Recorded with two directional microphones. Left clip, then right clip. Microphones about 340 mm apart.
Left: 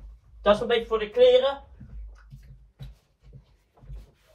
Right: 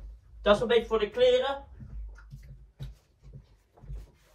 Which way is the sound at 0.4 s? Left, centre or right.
Centre.